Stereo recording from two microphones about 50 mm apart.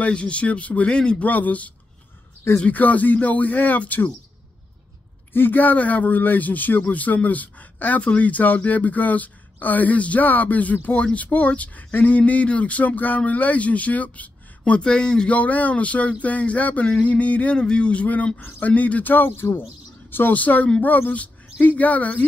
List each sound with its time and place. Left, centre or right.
0.0 s speech: left
1.2 s speech: left
2.7 s speech: left
5.3 s speech: left
11.9 s a sound: left
12.2 s speech: left
14.8 s speech: centre
15.3 s speech: left
17.6 s a woman's voice: centre